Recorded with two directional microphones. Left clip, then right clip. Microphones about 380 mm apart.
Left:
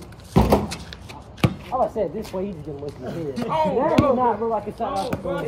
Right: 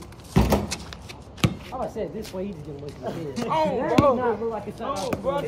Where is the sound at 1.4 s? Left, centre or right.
Centre.